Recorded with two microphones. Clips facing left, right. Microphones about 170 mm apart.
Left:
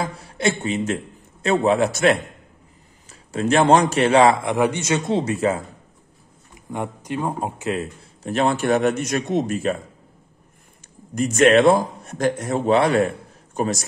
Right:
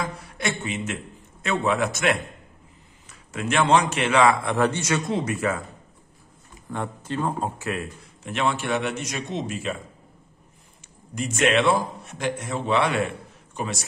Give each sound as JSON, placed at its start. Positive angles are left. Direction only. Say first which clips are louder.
{"t": 0.0, "sound": "a sound", "louder": "left 6 dB", "side_deg": 30}
{"t": 1.4, "sound": "a man's voice", "louder": "left 6 dB", "side_deg": 35}
{"t": 4.4, "sound": "speech", "louder": "left 3 dB", "side_deg": 15}
{"t": 6.5, "sound": "speech", "louder": "left 3 dB", "side_deg": 15}
{"t": 8.3, "sound": "a man's voice", "louder": "left 6 dB", "side_deg": 40}
{"t": 11.1, "sound": "a man's voice", "louder": "left 7 dB", "side_deg": 45}